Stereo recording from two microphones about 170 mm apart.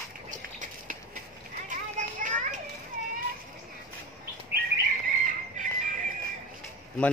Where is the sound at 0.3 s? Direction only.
50° right (ahead or behind).